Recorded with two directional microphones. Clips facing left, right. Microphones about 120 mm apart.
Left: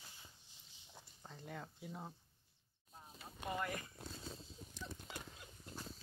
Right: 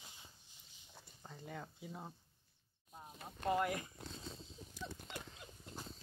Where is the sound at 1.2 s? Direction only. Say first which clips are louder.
Right 1 dB; centre (ahead or behind).